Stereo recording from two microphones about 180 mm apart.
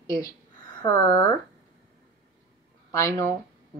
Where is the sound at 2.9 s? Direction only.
15° left (ahead or behind).